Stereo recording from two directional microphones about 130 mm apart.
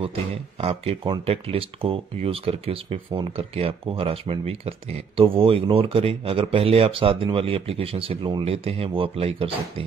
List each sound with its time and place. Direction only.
0.6 s speech: 50° right (ahead or behind)